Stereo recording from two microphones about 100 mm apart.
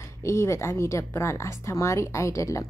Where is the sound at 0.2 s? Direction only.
30° left (ahead or behind).